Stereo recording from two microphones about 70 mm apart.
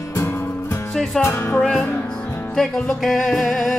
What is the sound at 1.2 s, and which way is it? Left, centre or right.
Music, left.